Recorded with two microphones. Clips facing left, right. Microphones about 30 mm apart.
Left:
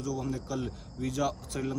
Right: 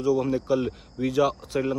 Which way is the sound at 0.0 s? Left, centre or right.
Right.